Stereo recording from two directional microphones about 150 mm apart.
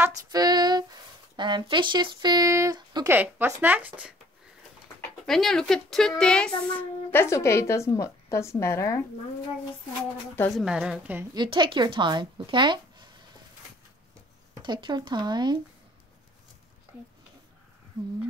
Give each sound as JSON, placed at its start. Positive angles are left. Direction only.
{"t": 0.0, "sound": "speech", "side_deg": -25}
{"t": 3.1, "sound": "speech", "side_deg": -15}
{"t": 5.2, "sound": "speech", "side_deg": 0}
{"t": 10.5, "sound": "a woman's voice", "side_deg": -5}
{"t": 11.3, "sound": "speech", "side_deg": -30}
{"t": 14.5, "sound": "speech", "side_deg": -30}